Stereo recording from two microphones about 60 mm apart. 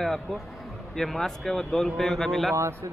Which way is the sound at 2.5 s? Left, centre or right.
Right.